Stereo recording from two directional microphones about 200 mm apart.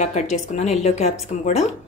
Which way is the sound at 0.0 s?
35° left (ahead or behind).